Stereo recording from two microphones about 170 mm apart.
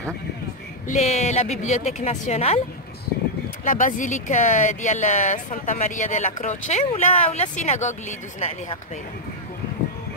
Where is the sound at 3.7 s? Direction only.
50° left (ahead or behind).